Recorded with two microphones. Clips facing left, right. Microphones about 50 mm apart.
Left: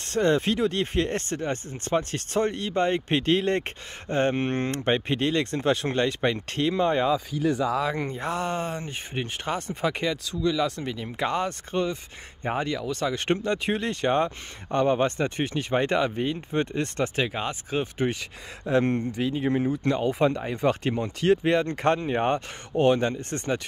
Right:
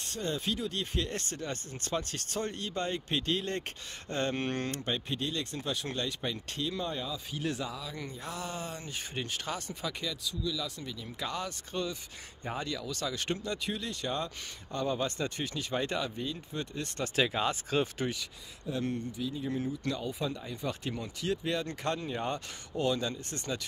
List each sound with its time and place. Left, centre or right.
0.0 s speech: left
4.6 s speech: left
7.7 s speech: left
8.0 s speech: left
17.1 s speech: centre
18.7 s speech: left
19.8 s speech: left